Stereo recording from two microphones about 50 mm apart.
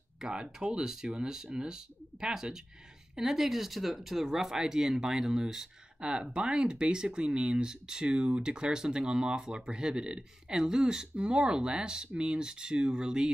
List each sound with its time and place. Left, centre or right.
0.2 s speech: centre